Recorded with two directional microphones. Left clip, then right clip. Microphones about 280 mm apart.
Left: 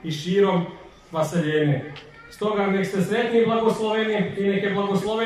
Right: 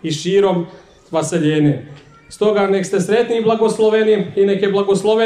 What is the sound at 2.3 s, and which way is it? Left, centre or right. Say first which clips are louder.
A man's voice: right 8 dB; right.